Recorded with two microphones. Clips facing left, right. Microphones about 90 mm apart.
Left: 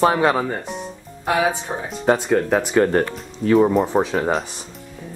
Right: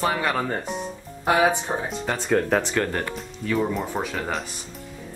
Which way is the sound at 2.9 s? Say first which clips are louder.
Left 8 dB; 35° left (ahead or behind).